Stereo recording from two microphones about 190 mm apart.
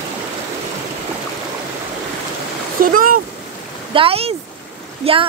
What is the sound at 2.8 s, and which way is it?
Speech, 45° right (ahead or behind).